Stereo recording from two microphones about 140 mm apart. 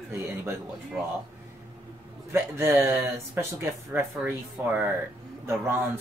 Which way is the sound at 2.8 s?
20° right (ahead or behind).